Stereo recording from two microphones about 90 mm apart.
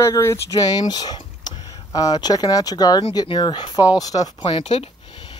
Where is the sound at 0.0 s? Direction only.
35° left (ahead or behind).